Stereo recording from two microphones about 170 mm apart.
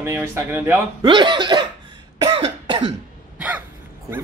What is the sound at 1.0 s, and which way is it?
Speech, 30° right (ahead or behind).